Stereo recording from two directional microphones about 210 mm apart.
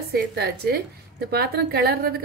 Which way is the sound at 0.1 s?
50° right (ahead or behind).